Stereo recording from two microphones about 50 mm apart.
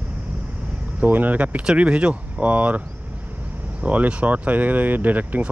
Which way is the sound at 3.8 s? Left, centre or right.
Right.